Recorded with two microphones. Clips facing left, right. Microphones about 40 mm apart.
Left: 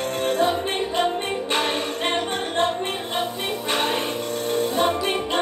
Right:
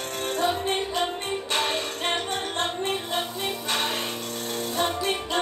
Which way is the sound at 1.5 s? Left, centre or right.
Centre.